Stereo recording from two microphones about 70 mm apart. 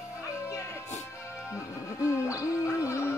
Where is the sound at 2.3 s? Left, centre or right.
Left.